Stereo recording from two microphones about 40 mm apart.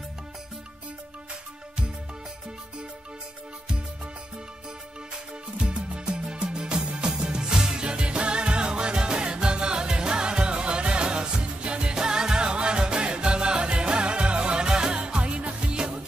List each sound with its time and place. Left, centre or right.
5.6 s music: right